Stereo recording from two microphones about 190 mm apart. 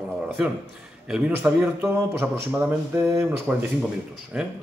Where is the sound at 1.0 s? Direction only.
5° right (ahead or behind).